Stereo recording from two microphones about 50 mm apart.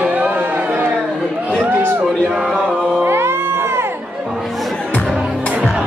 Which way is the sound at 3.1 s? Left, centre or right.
Right.